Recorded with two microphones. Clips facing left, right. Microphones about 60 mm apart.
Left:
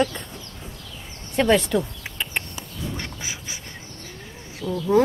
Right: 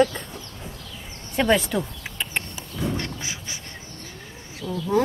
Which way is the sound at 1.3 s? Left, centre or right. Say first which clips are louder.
Left 2 dB; centre.